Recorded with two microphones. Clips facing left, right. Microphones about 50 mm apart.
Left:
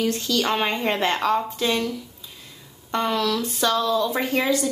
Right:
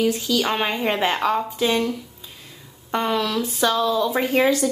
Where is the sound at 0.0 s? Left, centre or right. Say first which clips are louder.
Right 2 dB; centre.